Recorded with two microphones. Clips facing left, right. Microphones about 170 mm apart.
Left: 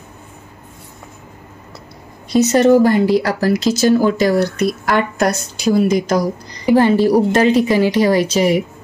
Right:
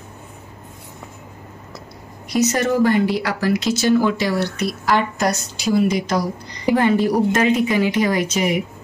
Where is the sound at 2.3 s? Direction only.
30° left (ahead or behind); by 4.6 s 45° left (ahead or behind).